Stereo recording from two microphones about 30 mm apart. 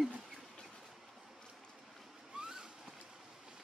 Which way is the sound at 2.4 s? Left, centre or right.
Right.